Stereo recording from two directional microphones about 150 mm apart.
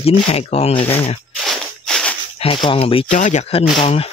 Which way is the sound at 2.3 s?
35° left (ahead or behind).